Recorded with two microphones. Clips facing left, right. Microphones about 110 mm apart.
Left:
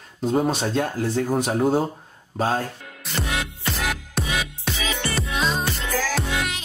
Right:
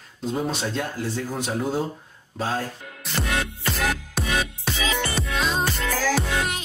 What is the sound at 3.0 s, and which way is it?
Music, centre (ahead or behind).